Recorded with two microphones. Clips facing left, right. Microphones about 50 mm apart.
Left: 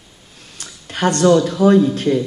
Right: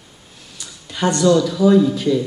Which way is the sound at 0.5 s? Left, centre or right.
Left.